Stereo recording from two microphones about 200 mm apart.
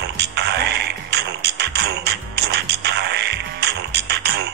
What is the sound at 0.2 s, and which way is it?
Music, 55° right (ahead or behind).